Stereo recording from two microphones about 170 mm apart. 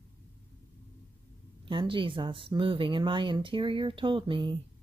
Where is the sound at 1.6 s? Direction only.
30° right (ahead or behind).